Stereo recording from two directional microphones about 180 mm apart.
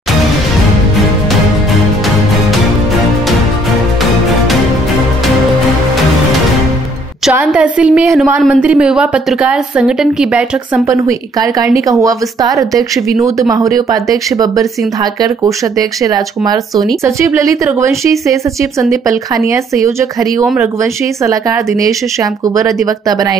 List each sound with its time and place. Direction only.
7.2 s a woman's voice: 5° right (ahead or behind)
10.9 s speech: 15° right (ahead or behind)